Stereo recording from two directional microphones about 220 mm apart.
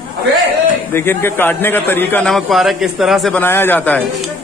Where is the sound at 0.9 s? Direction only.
10° left (ahead or behind).